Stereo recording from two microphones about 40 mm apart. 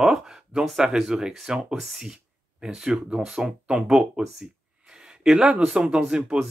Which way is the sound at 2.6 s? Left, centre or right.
Centre.